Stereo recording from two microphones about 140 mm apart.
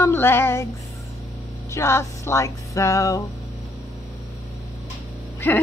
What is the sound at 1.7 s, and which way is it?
Speech, 20° left (ahead or behind).